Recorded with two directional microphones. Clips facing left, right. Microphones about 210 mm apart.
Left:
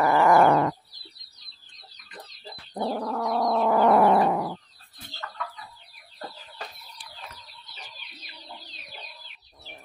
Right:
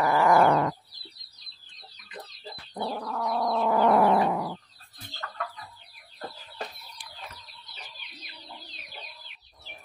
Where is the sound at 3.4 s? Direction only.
55° left (ahead or behind).